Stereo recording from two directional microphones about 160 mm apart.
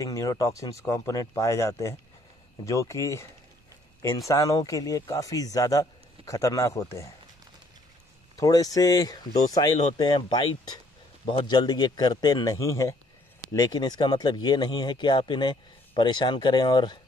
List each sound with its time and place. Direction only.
0.0 s speech: 20° left (ahead or behind)
4.3 s speech: 20° left (ahead or behind)
8.4 s speech: 20° left (ahead or behind)